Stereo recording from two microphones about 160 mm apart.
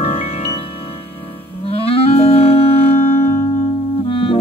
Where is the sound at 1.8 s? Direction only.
35° left (ahead or behind).